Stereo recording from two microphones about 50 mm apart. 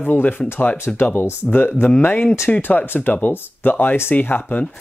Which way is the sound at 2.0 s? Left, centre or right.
Left.